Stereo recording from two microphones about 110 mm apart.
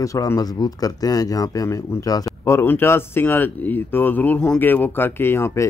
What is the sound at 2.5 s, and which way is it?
Speech, 20° left (ahead or behind).